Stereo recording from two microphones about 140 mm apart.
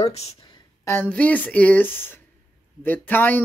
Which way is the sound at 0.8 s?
15° left (ahead or behind).